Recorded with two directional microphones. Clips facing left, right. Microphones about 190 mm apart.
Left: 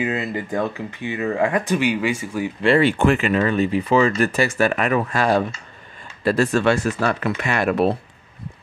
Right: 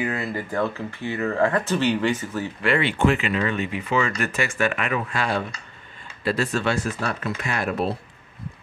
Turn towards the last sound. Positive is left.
turn(degrees=70)  # may be behind; listen again after turning